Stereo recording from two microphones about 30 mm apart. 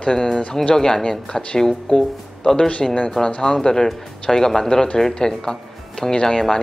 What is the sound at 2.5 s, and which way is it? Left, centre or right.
Speech, left.